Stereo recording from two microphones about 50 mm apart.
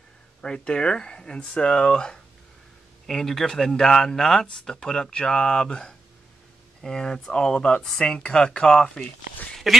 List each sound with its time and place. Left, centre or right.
0.4 s speech: centre
8.2 s speech: left
8.5 s speech: centre
9.6 s quack: centre